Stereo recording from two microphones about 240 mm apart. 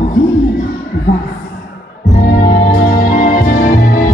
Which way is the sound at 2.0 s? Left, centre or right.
Left.